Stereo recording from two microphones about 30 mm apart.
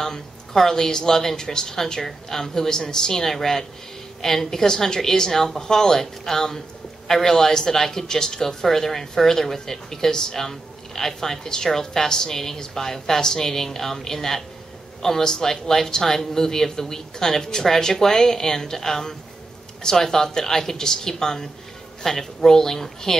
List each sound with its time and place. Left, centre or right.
0.0 s speech: centre